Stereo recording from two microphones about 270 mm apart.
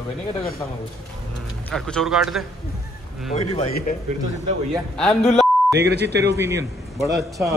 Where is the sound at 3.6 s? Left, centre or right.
Left.